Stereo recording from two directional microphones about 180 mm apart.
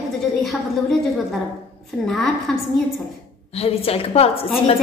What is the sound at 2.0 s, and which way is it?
Speech, centre (ahead or behind).